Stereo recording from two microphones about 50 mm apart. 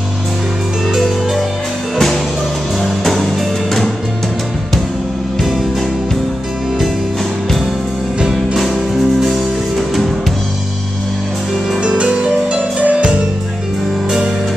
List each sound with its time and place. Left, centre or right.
0.9 s music: centre
3.0 s music: centre
8.3 s music: centre
11.8 s music: right